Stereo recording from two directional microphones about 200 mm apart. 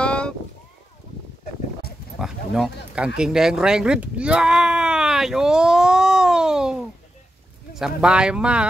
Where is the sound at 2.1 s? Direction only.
Centre (ahead or behind).